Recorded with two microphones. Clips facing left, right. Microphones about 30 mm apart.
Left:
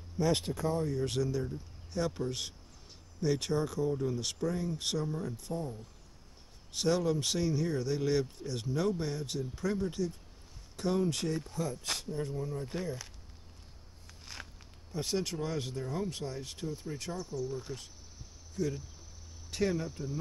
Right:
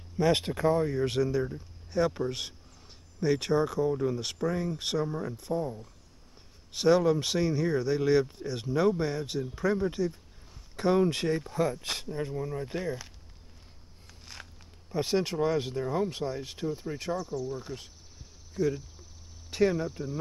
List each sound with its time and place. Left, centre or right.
0.2 s speech: right
14.0 s a sound: centre
14.9 s speech: right